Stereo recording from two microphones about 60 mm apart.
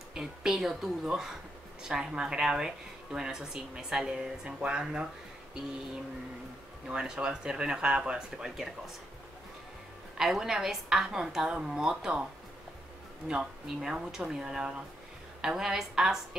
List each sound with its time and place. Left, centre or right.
0.1 s speech: centre
6.9 s speech: centre
10.1 s speech: centre
13.3 s speech: centre